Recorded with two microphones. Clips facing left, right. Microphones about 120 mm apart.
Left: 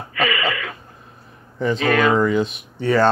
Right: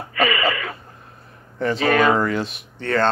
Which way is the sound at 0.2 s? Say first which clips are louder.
Right 1 dB; 35° right (ahead or behind).